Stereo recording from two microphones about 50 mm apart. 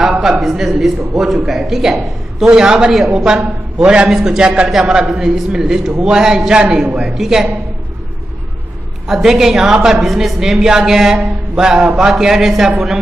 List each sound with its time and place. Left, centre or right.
0.2 s a man's voice: centre
3.8 s a man's voice: right
9.0 s a woman's voice: centre
11.2 s mantra: centre
12.0 s a woman's voice: centre